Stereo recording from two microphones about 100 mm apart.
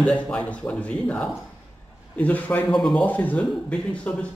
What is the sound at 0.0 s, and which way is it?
Speech, 10° left (ahead or behind).